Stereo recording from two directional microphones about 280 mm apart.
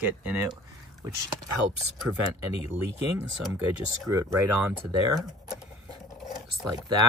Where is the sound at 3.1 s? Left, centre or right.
Centre.